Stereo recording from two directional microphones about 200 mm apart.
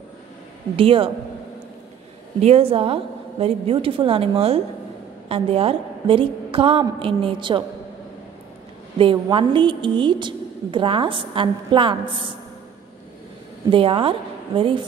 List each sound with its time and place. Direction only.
0.7 s a woman's voice: 25° right (ahead or behind)
2.4 s a woman's voice: 30° right (ahead or behind)
8.9 s a woman's voice: 25° right (ahead or behind)
13.7 s a woman's voice: 25° right (ahead or behind)